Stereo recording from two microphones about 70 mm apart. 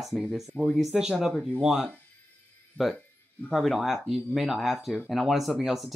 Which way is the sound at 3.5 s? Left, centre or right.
Centre.